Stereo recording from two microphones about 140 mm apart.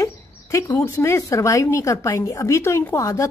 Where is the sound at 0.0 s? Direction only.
25° left (ahead or behind).